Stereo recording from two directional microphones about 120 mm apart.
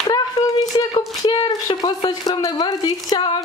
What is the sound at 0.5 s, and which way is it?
Speech, 35° left (ahead or behind).